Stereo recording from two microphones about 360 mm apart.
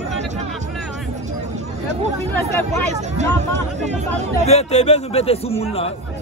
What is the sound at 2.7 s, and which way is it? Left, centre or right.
Speech, centre.